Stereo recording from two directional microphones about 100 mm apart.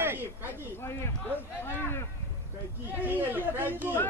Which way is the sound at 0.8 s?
25° left (ahead or behind).